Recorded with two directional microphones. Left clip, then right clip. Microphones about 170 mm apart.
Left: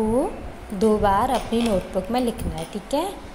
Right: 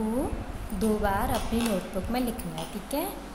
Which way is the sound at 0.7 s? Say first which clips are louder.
Left 9 dB; 25° left (ahead or behind).